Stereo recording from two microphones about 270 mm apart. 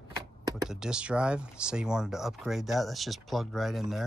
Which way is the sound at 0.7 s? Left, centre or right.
Centre.